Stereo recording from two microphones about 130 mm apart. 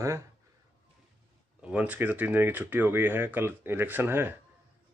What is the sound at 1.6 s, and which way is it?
Speech, 10° right (ahead or behind).